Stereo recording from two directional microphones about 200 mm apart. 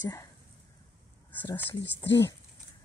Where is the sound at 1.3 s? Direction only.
10° left (ahead or behind).